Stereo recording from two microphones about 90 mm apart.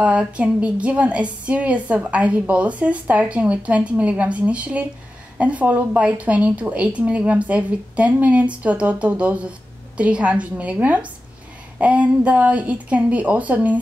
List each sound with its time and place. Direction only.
0.0 s a woman's voice: 15° right (ahead or behind)